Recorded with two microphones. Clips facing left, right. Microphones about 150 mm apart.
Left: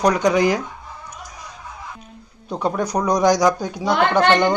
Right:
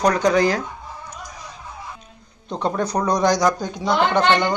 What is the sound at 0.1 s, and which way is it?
Speech, 15° left (ahead or behind).